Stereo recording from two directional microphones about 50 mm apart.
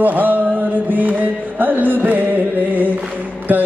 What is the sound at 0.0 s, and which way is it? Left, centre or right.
Chant, right.